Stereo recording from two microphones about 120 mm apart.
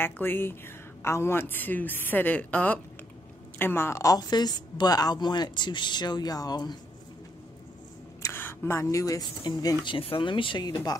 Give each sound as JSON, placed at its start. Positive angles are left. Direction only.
{"t": 0.0, "sound": "a woman's voice", "side_deg": 20}
{"t": 8.2, "sound": "speech", "side_deg": 20}
{"t": 9.9, "sound": "speech", "side_deg": 45}